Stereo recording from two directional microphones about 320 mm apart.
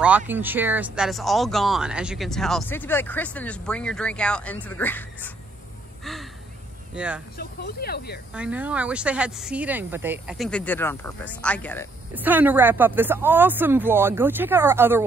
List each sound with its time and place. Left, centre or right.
0.0 s speech: centre
7.3 s speech: left
8.3 s speech: centre
12.1 s a woman's voice: centre